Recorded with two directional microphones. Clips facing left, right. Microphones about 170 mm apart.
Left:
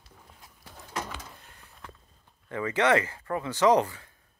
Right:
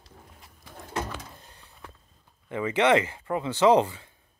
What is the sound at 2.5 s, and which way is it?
Speech, 20° right (ahead or behind).